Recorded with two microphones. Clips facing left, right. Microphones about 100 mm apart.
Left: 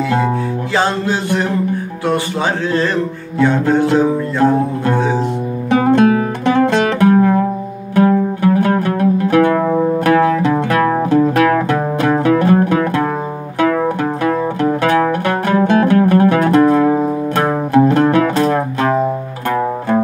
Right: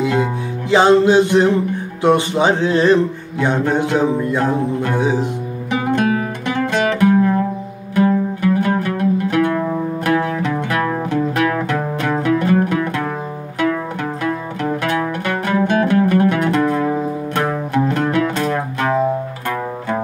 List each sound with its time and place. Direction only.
0.1 s music: 20° right (ahead or behind)
6.6 s music: 45° left (ahead or behind)
9.4 s music: 60° left (ahead or behind)
9.7 s music: 40° left (ahead or behind)
10.1 s music: 65° left (ahead or behind)
10.4 s music: 40° left (ahead or behind)
14.2 s music: 40° left (ahead or behind)